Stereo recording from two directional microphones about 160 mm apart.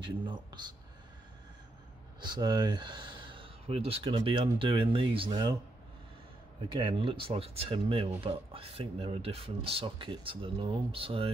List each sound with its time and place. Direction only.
0.0 s a man's voice: 30° right (ahead or behind)
2.1 s speech: 30° right (ahead or behind)
6.8 s speech: 30° right (ahead or behind)